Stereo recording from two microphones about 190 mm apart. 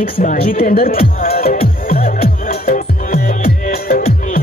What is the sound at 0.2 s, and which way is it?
Speech, 45° left (ahead or behind).